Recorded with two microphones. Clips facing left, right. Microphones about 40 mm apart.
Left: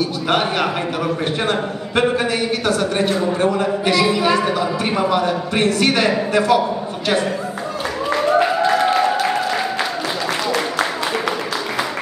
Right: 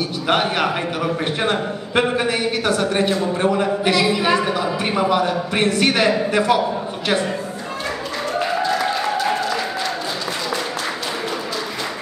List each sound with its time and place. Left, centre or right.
0.0 s a woman's voice: centre
8.4 s applause: left